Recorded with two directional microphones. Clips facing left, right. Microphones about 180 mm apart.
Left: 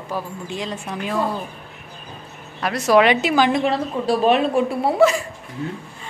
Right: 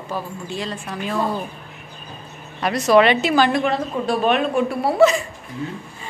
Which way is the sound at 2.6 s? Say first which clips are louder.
Right 1 dB; 5° left (ahead or behind).